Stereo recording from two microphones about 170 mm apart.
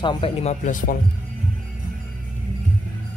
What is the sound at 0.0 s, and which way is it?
Speech, 30° left (ahead or behind).